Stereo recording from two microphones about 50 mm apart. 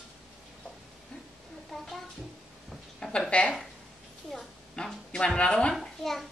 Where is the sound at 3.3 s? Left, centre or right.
Left.